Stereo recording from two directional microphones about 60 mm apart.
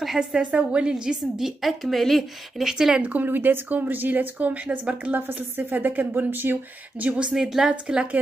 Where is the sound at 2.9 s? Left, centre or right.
Right.